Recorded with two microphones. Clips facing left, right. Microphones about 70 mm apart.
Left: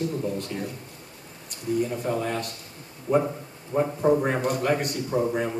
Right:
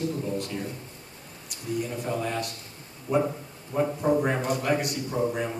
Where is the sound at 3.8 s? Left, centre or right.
Centre.